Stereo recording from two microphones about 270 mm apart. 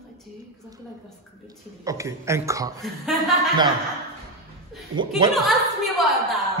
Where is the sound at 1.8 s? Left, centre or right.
Centre.